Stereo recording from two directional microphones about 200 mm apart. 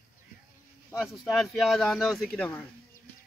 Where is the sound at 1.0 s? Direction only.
Centre (ahead or behind).